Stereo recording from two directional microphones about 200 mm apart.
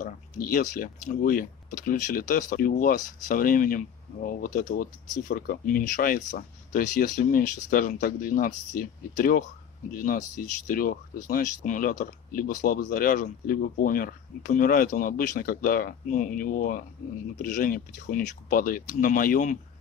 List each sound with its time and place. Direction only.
0.0 s speech: 45° left (ahead or behind)